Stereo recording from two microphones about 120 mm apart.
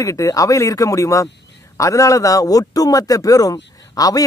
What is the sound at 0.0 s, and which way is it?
A man's voice, 30° left (ahead or behind).